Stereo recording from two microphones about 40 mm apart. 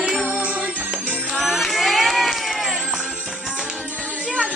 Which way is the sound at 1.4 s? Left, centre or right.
Centre.